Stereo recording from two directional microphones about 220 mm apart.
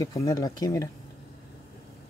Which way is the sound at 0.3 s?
15° left (ahead or behind).